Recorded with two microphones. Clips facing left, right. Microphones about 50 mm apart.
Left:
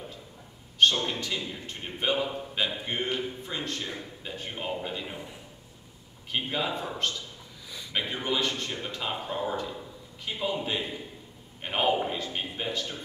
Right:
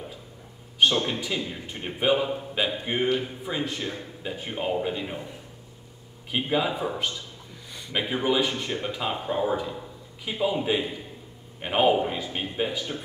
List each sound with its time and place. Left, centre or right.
0.9 s a man's voice: right
1.2 s a man's voice: centre
6.3 s a man's voice: centre